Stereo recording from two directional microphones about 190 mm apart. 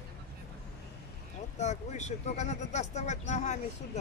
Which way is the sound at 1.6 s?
35° left (ahead or behind).